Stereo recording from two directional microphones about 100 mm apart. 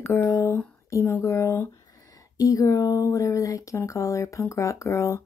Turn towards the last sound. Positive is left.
turn(degrees=30)  # may be behind; listen again after turning